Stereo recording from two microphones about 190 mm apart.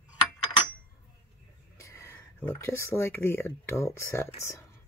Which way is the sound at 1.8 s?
15° left (ahead or behind).